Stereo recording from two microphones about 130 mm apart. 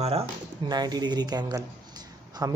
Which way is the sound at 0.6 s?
30° right (ahead or behind).